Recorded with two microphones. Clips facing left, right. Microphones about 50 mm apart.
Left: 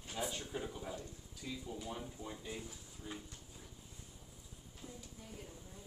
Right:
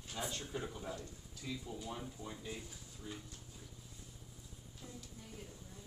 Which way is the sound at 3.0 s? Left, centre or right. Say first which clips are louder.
Left 1 dB; centre.